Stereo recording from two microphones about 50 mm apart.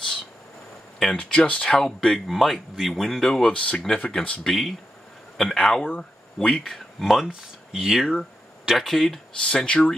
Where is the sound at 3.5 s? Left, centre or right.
Left.